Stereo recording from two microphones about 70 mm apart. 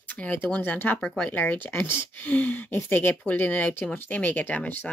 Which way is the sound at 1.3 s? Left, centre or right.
Left.